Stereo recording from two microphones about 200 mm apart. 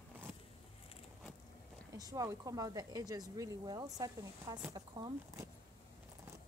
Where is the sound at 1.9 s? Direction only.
15° right (ahead or behind).